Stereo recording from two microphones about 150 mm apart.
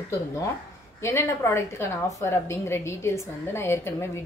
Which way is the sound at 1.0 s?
15° left (ahead or behind).